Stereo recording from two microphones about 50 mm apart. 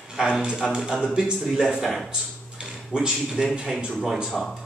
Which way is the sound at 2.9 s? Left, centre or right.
Centre.